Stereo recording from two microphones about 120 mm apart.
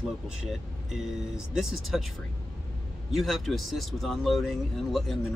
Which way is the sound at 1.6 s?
Centre (ahead or behind).